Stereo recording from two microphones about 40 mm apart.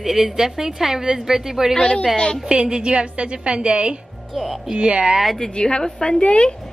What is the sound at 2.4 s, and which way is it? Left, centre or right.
A woman's voice, right.